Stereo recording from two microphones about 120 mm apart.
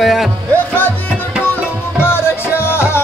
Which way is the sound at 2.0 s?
20° left (ahead or behind).